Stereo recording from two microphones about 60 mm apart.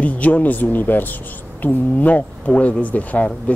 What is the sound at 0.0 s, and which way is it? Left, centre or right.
Speech, left.